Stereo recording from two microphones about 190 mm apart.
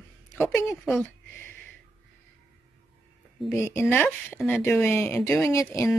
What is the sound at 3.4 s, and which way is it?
Speech, 15° left (ahead or behind).